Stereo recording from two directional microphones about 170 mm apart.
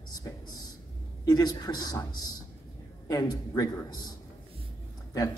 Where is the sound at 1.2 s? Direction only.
20° left (ahead or behind).